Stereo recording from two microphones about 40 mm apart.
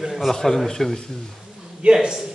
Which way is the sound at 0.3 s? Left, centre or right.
Centre.